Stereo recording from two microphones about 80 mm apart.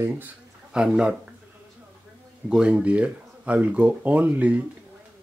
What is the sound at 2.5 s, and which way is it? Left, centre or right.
Speech, centre.